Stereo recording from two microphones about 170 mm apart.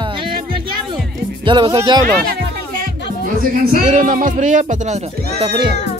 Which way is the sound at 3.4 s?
45° right (ahead or behind).